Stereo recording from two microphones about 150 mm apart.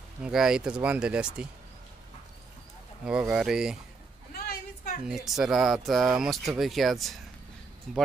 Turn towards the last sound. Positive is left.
turn(degrees=0)  # may be behind; listen again after turning